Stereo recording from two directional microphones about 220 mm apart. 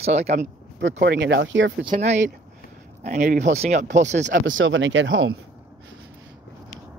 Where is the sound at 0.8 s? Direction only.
50° right (ahead or behind).